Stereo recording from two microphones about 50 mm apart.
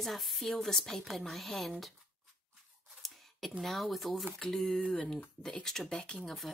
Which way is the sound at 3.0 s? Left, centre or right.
Centre.